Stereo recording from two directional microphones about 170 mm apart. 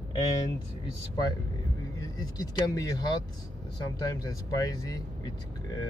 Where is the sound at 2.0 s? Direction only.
20° left (ahead or behind).